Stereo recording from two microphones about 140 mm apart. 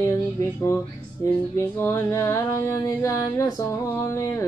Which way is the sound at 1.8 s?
20° left (ahead or behind).